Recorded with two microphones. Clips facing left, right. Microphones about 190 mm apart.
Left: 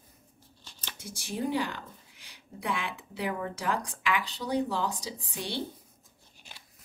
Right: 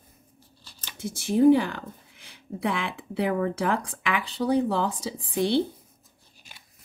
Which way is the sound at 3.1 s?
60° right (ahead or behind).